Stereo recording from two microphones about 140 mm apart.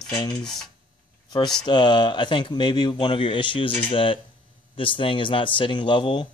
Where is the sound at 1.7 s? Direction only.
30° left (ahead or behind).